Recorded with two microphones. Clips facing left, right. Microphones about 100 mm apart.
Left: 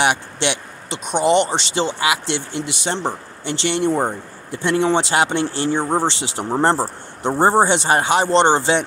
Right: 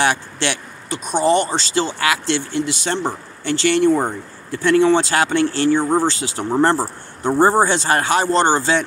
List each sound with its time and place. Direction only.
0.0 s speech: 20° left (ahead or behind)